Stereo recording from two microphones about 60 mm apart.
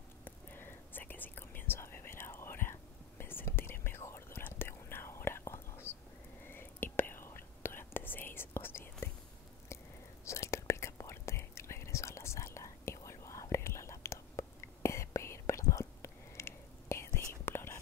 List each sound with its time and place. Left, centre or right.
0.2 s whispering: left
9.7 s whispering: left